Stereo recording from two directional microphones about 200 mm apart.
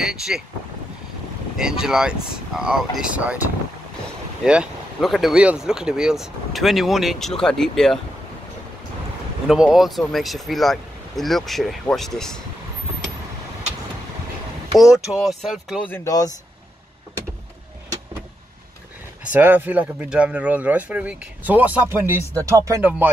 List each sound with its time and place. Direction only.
0.0 s speech: centre (ahead or behind)
1.6 s speech: 5° right (ahead or behind)
4.5 s speech: 5° right (ahead or behind)
9.5 s speech: 5° right (ahead or behind)
14.8 s speech: centre (ahead or behind)
15.9 s speech: 15° left (ahead or behind)
19.3 s speech: 10° right (ahead or behind)